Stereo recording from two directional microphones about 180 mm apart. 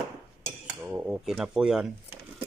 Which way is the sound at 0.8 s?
10° right (ahead or behind).